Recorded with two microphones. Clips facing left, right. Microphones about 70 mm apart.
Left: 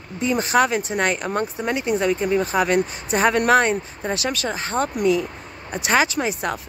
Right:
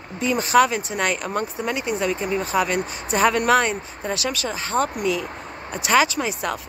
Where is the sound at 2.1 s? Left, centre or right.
Right.